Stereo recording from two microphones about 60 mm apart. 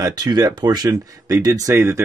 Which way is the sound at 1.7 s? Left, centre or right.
Right.